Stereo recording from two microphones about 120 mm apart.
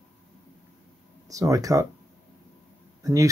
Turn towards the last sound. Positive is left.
turn(degrees=-30)  # may be behind; listen again after turning